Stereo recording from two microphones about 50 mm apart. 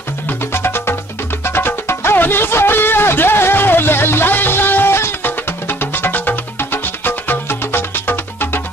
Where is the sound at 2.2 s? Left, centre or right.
Left.